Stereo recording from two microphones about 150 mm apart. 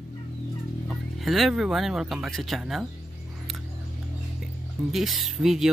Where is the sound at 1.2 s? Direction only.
Centre (ahead or behind).